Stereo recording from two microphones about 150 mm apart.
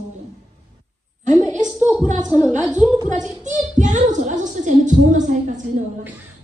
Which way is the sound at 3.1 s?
55° right (ahead or behind).